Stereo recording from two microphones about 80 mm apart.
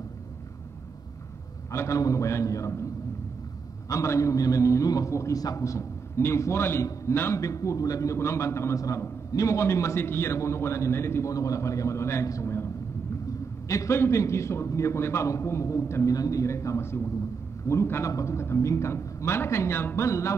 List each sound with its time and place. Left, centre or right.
1.7 s a man's voice: left
3.9 s a man's voice: left
13.7 s a man's voice: left